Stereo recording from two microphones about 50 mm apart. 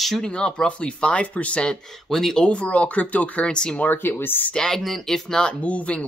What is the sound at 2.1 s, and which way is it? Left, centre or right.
Speech, centre.